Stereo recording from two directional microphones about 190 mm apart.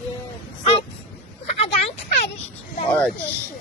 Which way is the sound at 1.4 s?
35° left (ahead or behind).